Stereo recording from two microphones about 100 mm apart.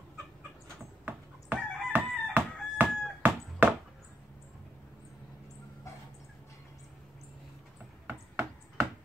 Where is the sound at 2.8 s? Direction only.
15° right (ahead or behind).